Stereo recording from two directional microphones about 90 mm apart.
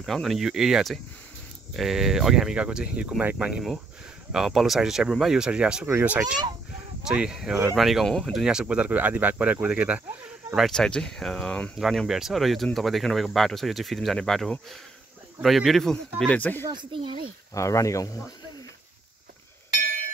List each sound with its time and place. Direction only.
0.0 s speech: centre (ahead or behind); by 10.0 s 15° right (ahead or behind)
10.7 s speech: 10° left (ahead or behind)
16.9 s speech: 70° right (ahead or behind)
17.6 s speech: 35° left (ahead or behind)